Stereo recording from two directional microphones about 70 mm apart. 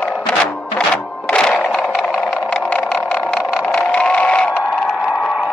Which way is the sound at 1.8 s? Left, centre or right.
Centre.